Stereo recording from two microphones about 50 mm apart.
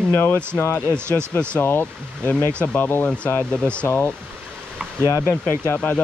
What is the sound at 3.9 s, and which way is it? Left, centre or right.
Speech, left.